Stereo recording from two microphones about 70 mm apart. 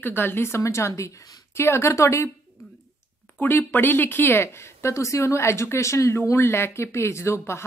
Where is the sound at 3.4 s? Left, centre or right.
Left.